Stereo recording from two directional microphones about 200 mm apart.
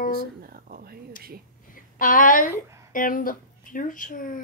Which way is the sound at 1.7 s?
45° left (ahead or behind).